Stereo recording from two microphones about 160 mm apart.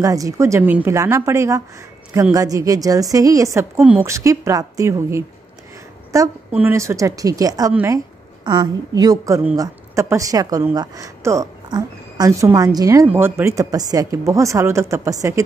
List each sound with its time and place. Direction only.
0.0 s a woman's voice: 20° right (ahead or behind)
3.8 s a woman's voice: 10° right (ahead or behind)
4.1 s a woman's voice: 20° right (ahead or behind)
8.5 s speech: 25° right (ahead or behind)